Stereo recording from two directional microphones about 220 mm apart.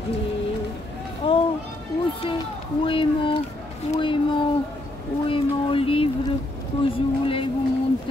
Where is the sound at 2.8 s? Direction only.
25° left (ahead or behind).